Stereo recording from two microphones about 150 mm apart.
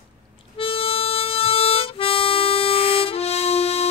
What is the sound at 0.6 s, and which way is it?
Harmonica, 40° left (ahead or behind).